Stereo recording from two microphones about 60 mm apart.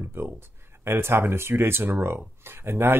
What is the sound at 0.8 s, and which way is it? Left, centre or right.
Speech, right.